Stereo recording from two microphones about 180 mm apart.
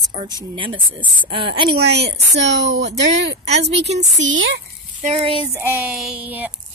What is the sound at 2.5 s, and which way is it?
Speech, 80° right.